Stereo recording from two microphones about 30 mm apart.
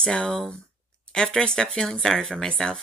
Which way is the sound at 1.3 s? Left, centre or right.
Left.